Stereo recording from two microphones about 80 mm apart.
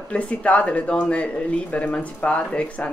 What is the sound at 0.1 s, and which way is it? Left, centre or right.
Speech, centre.